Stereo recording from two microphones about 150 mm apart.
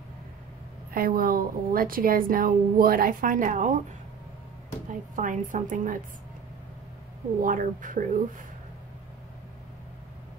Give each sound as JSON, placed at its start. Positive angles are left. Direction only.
{"t": 0.9, "sound": "a woman's voice", "side_deg": -70}
{"t": 5.1, "sound": "speech", "side_deg": -55}
{"t": 7.4, "sound": "speech", "side_deg": -60}